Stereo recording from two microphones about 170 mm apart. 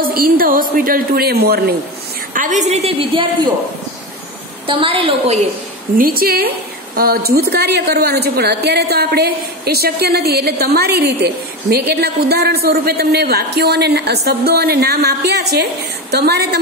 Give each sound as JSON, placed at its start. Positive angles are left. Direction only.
{"t": 0.0, "sound": "a woman's voice", "side_deg": -60}
{"t": 2.3, "sound": "a woman's voice", "side_deg": -45}
{"t": 4.6, "sound": "a woman's voice", "side_deg": -30}
{"t": 5.9, "sound": "a woman's voice", "side_deg": -60}